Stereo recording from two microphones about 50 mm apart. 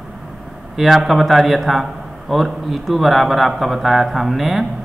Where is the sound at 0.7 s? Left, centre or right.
Centre.